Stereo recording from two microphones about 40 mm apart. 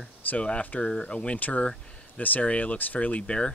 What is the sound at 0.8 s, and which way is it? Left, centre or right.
Speech, left.